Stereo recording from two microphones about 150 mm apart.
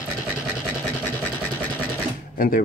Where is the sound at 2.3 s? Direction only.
70° left (ahead or behind).